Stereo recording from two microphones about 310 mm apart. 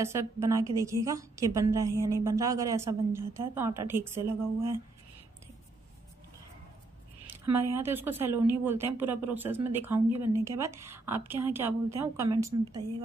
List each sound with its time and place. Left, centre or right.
0.0 s a woman's voice: centre
7.2 s a sound: centre
7.7 s a woman's voice: centre